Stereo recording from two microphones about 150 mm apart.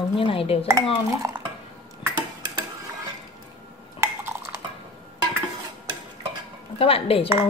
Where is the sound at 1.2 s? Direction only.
20° right (ahead or behind).